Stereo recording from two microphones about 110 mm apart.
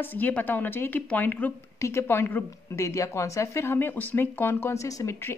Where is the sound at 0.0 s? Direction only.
15° left (ahead or behind).